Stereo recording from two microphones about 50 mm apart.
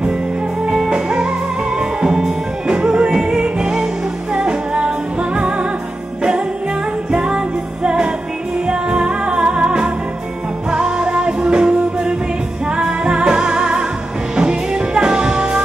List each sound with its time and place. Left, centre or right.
0.7 s music: centre
7.1 s music: centre